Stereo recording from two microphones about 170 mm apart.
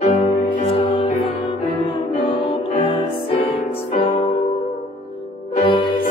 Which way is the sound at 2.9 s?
30° left (ahead or behind).